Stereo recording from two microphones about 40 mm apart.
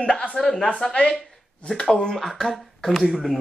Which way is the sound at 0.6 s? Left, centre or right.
Left.